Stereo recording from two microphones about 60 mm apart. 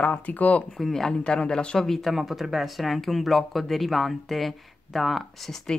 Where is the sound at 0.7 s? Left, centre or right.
Centre.